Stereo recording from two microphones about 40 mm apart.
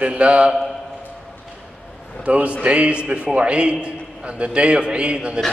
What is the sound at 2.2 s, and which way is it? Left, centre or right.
A man's voice, right.